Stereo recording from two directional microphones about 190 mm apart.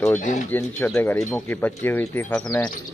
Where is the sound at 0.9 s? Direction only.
10° left (ahead or behind).